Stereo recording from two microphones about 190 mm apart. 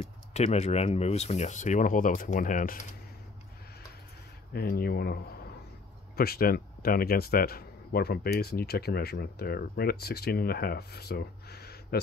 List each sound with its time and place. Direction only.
0.3 s speech: 35° left (ahead or behind)
4.6 s speech: 55° left (ahead or behind)